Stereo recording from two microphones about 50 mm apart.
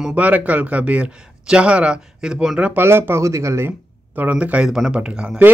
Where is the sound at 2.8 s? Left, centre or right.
Right.